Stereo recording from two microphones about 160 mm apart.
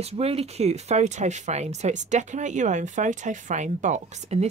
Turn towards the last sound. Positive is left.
turn(degrees=-45)  # may be behind; listen again after turning